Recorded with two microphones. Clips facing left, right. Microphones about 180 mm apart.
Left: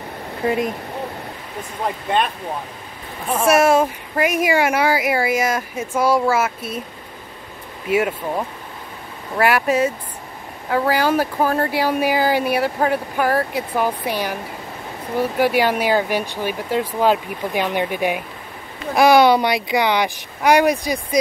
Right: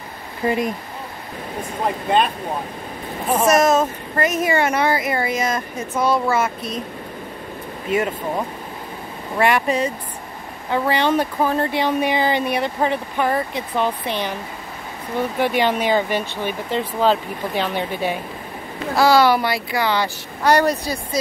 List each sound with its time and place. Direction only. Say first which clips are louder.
3.4 s speech: left 2 dB; 10° left (ahead or behind)
7.9 s speech: left 2 dB; 10° left (ahead or behind)
9.4 s speech: left 1 dB; 5° left (ahead or behind)